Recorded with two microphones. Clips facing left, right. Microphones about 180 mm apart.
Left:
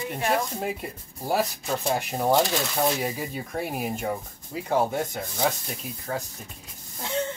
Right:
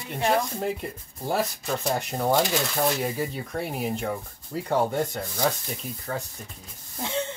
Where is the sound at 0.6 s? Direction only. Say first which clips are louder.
Right 2 dB; 5° left (ahead or behind).